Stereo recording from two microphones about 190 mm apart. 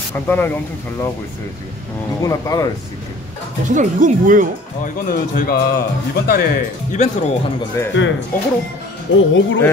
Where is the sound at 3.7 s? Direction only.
40° right (ahead or behind).